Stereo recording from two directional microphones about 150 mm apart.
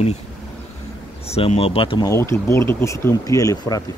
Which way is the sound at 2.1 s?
20° left (ahead or behind).